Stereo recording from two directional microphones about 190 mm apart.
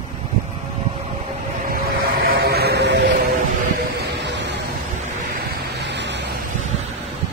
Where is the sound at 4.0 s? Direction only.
65° right (ahead or behind).